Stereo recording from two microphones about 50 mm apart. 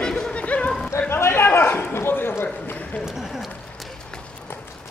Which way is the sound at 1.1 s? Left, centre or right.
Left.